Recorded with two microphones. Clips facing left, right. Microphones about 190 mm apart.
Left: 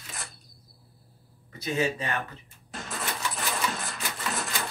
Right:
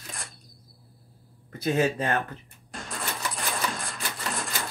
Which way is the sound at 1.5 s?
55° right (ahead or behind).